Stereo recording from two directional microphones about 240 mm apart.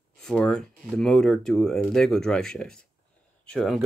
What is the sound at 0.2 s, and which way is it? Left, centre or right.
Speech, centre.